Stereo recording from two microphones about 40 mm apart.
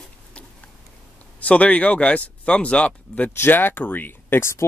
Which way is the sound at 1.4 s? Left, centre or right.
Left.